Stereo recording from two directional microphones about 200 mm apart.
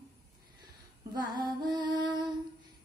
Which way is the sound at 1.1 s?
20° right (ahead or behind).